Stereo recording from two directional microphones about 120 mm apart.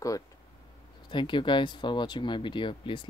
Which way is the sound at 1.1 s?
45° left (ahead or behind).